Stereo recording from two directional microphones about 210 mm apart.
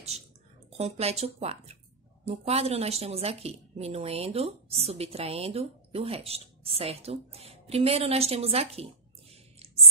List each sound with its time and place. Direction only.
0.7 s a woman's voice: 30° right (ahead or behind)